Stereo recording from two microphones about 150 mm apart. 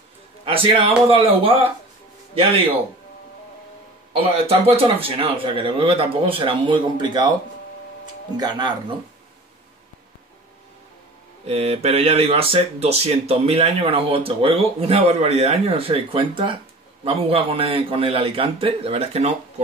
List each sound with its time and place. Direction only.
0.5 s speech: 35° right (ahead or behind)
4.2 s speech: 40° right (ahead or behind)
8.4 s speech: 30° right (ahead or behind)
11.4 s speech: 45° right (ahead or behind)